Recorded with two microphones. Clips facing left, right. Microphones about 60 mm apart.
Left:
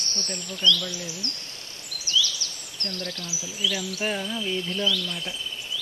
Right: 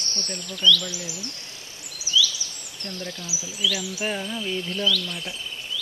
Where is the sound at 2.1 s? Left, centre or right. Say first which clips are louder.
Right 3 dB; centre.